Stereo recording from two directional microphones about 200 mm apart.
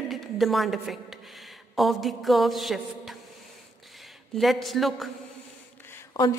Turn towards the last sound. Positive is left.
turn(degrees=20)  # may be behind; listen again after turning